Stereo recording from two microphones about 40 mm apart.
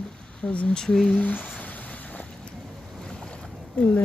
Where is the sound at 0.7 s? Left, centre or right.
Centre.